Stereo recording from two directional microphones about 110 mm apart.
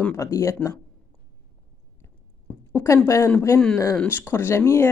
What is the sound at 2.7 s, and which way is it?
Speech, 25° left (ahead or behind).